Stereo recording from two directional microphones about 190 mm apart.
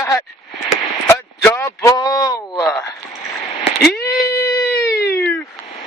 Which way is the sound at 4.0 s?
55° left (ahead or behind).